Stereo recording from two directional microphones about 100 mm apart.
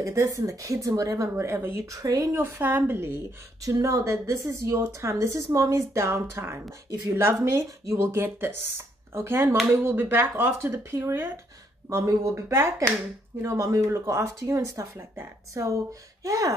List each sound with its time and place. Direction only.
0.0 s speech: 30° right (ahead or behind)
2.0 s speech: 35° right (ahead or behind)